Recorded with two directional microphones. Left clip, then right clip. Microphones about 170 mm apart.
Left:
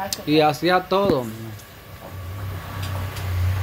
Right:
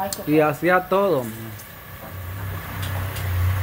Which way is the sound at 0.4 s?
20° left (ahead or behind).